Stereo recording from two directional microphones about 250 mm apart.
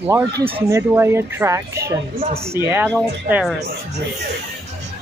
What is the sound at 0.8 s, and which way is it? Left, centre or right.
Speech, centre.